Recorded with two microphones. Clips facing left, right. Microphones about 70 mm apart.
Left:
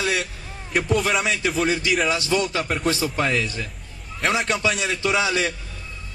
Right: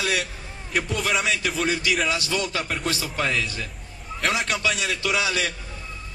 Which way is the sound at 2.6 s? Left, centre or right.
Centre.